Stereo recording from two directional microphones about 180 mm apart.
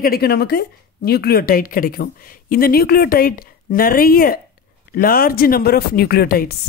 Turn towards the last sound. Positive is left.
turn(degrees=55)  # may be behind; listen again after turning